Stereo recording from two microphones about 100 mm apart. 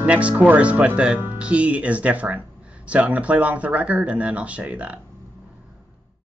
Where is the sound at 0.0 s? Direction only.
15° right (ahead or behind).